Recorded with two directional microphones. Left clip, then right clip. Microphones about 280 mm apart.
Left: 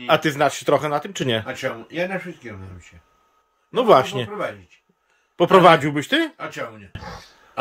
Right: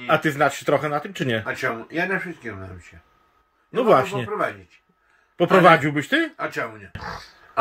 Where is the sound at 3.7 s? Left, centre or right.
Centre.